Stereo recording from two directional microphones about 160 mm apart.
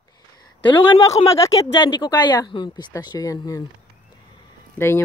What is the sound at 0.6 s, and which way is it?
Speech, 30° left (ahead or behind).